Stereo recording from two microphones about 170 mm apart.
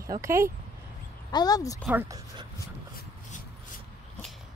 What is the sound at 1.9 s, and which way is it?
Speech, 10° right (ahead or behind).